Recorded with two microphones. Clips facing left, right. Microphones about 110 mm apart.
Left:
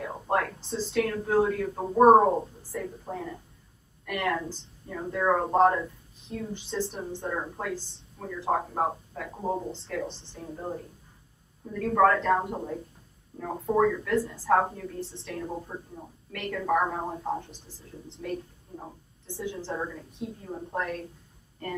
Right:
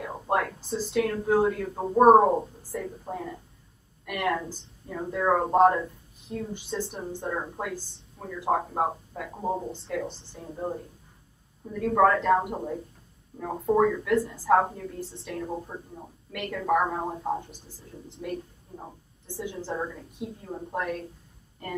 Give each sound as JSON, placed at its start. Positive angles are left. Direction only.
{"t": 0.0, "sound": "a sound", "side_deg": -5}
{"t": 0.9, "sound": "a woman's voice", "side_deg": -5}
{"t": 4.0, "sound": "a woman's voice", "side_deg": -15}
{"t": 4.8, "sound": "a woman's voice", "side_deg": -5}